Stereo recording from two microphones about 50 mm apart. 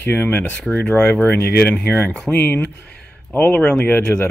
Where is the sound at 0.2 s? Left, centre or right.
Left.